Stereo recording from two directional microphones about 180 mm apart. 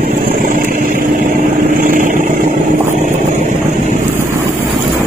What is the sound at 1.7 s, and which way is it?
Vehicle, 50° right (ahead or behind).